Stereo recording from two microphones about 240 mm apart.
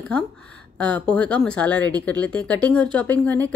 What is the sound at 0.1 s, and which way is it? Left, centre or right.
A woman's voice, centre.